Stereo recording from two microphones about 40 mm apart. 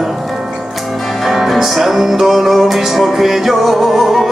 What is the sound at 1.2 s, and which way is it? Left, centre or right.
Music, centre.